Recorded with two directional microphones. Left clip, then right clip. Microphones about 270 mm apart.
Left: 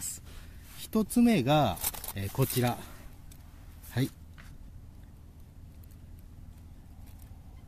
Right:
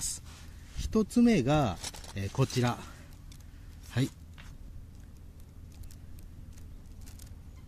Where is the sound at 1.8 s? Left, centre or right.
Left.